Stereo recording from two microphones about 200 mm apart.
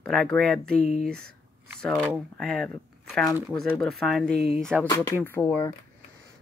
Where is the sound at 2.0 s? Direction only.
Centre (ahead or behind).